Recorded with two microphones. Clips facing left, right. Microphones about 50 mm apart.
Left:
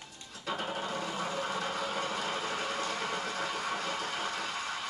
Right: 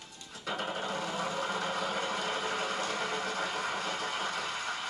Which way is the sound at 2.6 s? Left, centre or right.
Right.